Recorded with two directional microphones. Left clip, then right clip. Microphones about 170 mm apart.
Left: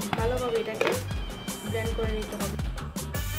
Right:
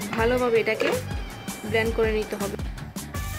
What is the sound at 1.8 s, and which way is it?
Speech, centre (ahead or behind).